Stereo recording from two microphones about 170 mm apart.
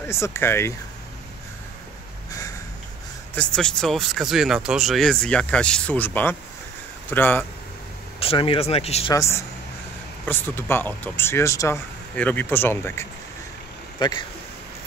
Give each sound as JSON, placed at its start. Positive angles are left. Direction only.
{"t": 0.1, "sound": "speech", "side_deg": 15}
{"t": 3.3, "sound": "speech", "side_deg": 5}
{"t": 8.2, "sound": "speech", "side_deg": 30}
{"t": 9.1, "sound": "speech", "side_deg": 15}
{"t": 13.9, "sound": "speech", "side_deg": 25}